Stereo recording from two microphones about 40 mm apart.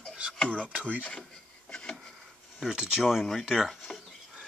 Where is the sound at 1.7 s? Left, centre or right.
Left.